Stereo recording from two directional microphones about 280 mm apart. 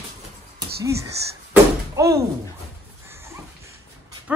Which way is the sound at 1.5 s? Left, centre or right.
Centre.